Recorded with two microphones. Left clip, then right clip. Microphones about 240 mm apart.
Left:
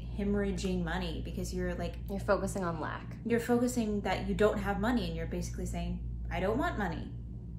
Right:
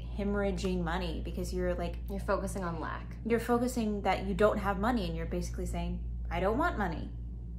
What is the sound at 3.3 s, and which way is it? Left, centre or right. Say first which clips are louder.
A woman's voice: even; centre.